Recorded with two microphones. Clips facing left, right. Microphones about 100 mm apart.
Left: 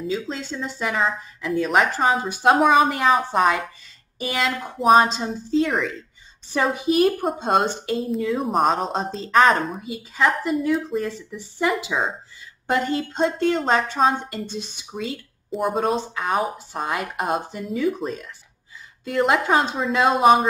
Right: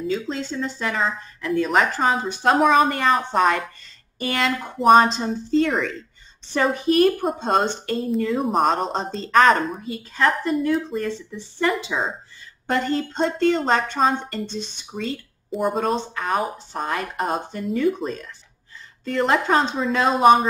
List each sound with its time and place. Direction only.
0.0 s a woman's voice: centre (ahead or behind)